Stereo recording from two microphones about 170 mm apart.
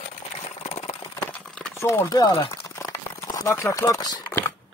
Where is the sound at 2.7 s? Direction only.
20° left (ahead or behind).